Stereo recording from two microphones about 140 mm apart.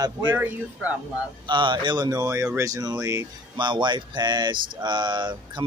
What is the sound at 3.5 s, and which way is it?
Speech, 35° right (ahead or behind).